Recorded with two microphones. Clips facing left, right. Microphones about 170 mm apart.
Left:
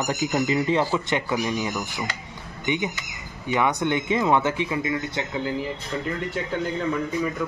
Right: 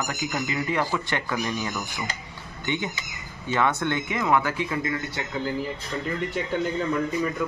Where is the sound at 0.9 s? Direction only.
15° left (ahead or behind).